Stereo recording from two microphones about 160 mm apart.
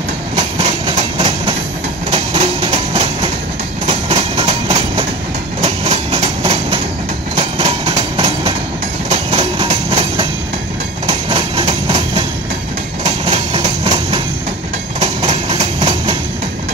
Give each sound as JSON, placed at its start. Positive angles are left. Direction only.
{"t": 0.4, "sound": "train", "side_deg": -40}